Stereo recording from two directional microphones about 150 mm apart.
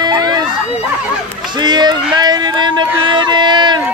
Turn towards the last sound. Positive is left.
turn(degrees=-30)  # may be behind; listen again after turning